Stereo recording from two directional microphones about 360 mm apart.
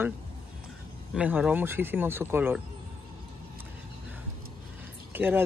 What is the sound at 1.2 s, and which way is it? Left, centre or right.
Speech, centre.